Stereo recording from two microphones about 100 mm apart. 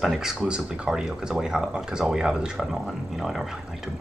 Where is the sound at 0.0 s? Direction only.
5° right (ahead or behind).